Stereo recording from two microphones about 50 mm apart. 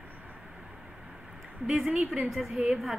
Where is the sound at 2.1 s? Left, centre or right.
Centre.